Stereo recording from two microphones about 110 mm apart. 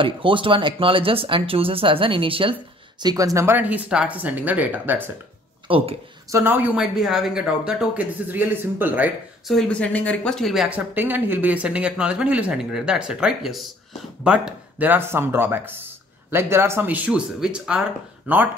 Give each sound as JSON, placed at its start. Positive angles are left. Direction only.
{"t": 0.0, "sound": "speech", "side_deg": -50}
{"t": 3.0, "sound": "speech", "side_deg": -35}
{"t": 5.7, "sound": "speech", "side_deg": -55}
{"t": 6.3, "sound": "speech", "side_deg": -20}
{"t": 6.8, "sound": "speech", "side_deg": -5}
{"t": 9.5, "sound": "speech", "side_deg": 5}
{"t": 10.7, "sound": "speech", "side_deg": -15}